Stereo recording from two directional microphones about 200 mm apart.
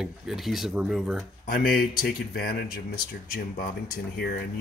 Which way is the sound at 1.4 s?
45° left (ahead or behind).